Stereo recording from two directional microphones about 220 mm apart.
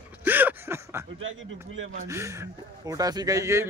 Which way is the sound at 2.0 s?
15° right (ahead or behind).